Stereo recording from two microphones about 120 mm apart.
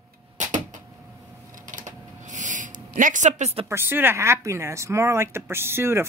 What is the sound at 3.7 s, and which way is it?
Speech, 20° right (ahead or behind).